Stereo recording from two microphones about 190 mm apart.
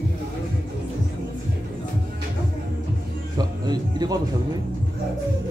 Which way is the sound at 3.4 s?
20° right (ahead or behind).